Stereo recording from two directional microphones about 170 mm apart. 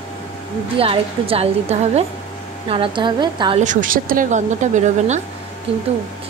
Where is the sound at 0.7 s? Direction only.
35° right (ahead or behind).